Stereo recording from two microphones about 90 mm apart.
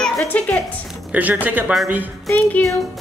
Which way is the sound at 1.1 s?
15° right (ahead or behind).